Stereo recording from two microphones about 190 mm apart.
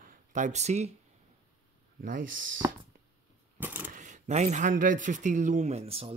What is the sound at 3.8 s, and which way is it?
Speech, 40° right (ahead or behind).